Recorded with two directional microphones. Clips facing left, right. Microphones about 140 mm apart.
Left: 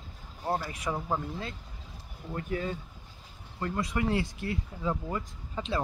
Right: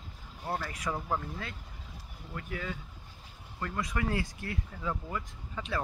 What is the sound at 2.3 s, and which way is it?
Speech, 35° left (ahead or behind).